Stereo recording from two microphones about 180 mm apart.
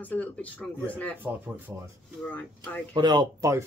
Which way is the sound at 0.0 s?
10° left (ahead or behind).